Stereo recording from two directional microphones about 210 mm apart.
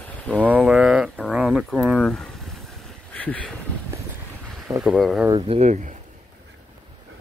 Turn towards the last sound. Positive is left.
turn(degrees=-35)  # may be behind; listen again after turning